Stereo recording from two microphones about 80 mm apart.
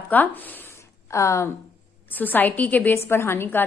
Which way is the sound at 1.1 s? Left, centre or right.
Left.